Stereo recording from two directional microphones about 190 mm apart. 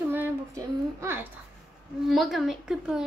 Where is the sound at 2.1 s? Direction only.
Centre (ahead or behind).